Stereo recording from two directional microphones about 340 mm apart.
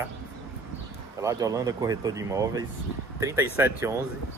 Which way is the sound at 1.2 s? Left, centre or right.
Centre.